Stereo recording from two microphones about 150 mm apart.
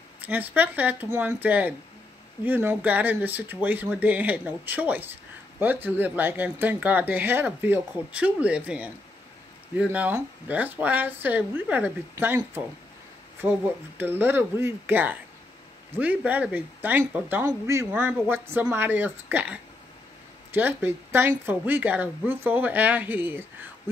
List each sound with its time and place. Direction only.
0.2 s speech: 10° right (ahead or behind)
9.9 s speech: 10° right (ahead or behind)